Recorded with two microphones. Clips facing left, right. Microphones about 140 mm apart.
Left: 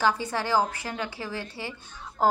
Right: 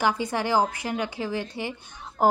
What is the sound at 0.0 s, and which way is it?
A woman's voice, 15° right (ahead or behind).